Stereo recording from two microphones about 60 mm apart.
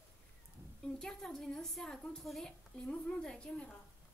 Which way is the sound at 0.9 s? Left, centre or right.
Centre.